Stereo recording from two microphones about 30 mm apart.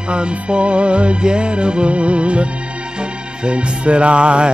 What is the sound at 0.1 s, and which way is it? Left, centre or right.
Music, right.